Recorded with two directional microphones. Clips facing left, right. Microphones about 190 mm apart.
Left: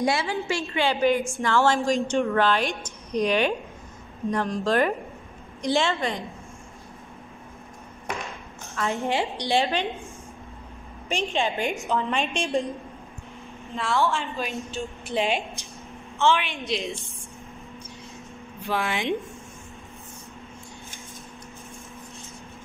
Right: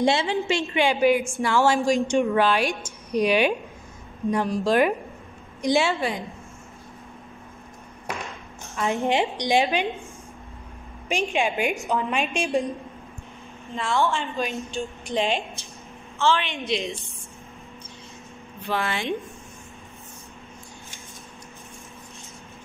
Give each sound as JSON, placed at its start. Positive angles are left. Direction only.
{"t": 0.0, "sound": "a woman's voice", "side_deg": -20}
{"t": 8.7, "sound": "a woman's voice", "side_deg": -15}
{"t": 11.1, "sound": "a woman's voice", "side_deg": -15}
{"t": 13.7, "sound": "a woman's voice", "side_deg": 0}
{"t": 16.5, "sound": "a woman's voice", "side_deg": 0}
{"t": 18.7, "sound": "speech", "side_deg": 15}